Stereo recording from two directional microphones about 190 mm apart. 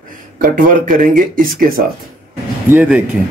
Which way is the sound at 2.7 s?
10° right (ahead or behind).